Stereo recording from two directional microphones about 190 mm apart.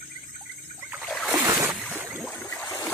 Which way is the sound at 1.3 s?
20° right (ahead or behind).